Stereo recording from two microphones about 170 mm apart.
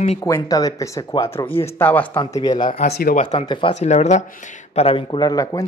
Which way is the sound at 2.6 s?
35° left (ahead or behind).